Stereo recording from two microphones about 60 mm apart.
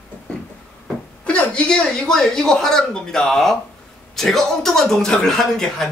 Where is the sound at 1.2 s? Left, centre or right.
Centre.